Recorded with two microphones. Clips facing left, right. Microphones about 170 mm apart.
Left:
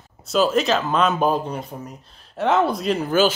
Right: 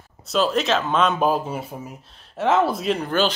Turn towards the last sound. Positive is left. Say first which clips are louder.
# left 3 dB
turn(degrees=5)  # may be behind; listen again after turning